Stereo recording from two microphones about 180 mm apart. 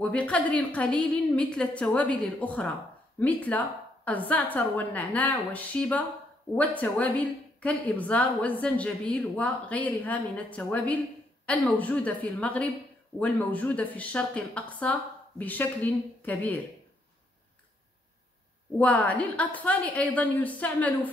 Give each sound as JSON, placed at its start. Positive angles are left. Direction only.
{"t": 0.0, "sound": "a woman's voice", "side_deg": 5}
{"t": 18.8, "sound": "a woman's voice", "side_deg": 10}